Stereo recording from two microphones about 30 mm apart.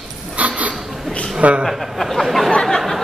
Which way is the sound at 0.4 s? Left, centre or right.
Right.